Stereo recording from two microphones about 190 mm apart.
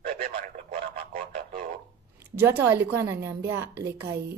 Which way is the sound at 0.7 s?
50° right (ahead or behind).